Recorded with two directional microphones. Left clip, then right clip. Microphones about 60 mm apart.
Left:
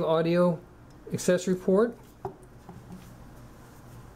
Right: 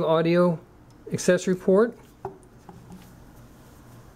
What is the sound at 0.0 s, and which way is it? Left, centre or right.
Speech, right.